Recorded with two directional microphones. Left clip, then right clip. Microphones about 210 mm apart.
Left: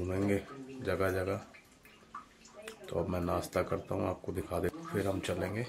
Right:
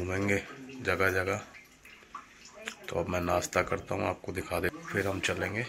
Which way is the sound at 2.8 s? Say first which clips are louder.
Right 3 dB; 5° left (ahead or behind).